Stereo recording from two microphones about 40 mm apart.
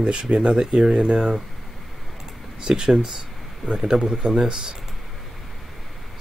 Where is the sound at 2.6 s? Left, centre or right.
Centre.